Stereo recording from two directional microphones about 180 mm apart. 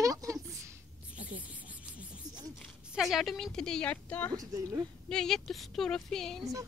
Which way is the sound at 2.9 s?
Centre (ahead or behind).